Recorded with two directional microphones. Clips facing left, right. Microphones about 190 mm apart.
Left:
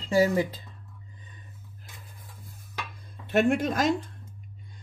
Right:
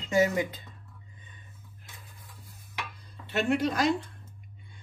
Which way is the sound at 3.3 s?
50° left (ahead or behind).